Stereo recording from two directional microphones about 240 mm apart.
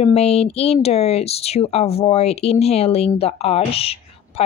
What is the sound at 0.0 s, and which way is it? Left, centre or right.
A woman's voice, left.